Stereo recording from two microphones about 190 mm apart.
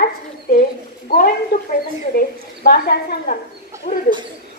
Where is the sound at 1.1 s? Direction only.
55° left (ahead or behind).